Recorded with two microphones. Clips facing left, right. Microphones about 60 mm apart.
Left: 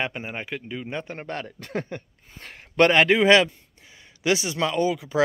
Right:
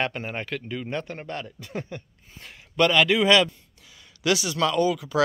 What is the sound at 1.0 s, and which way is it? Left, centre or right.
A man's voice, left.